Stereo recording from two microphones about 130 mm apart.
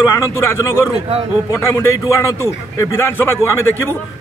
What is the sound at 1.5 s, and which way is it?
A man's voice, 20° left (ahead or behind).